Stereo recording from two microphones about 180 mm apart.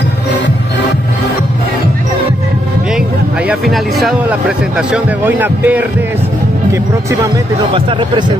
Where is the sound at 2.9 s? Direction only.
5° right (ahead or behind).